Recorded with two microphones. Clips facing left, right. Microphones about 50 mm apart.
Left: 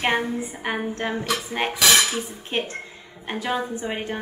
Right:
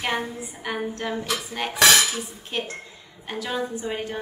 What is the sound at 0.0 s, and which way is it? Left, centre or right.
A woman's voice, left.